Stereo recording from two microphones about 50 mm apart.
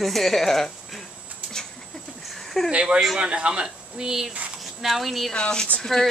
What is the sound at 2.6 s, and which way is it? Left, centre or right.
A woman's voice, right.